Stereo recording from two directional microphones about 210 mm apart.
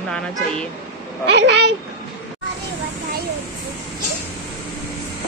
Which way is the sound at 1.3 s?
55° right (ahead or behind).